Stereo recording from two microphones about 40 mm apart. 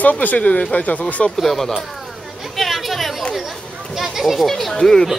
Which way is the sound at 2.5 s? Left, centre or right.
Centre.